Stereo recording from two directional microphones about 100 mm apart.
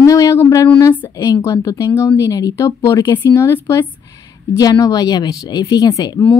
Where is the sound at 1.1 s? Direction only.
35° left (ahead or behind).